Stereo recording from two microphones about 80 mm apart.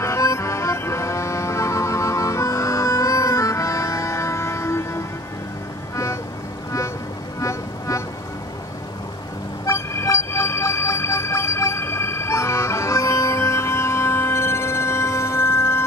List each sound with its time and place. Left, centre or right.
0.0 s music: left
7.3 s music: left
9.7 s vehicle: left